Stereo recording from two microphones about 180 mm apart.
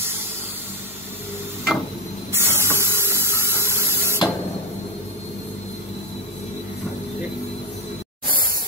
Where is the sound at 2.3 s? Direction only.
15° right (ahead or behind).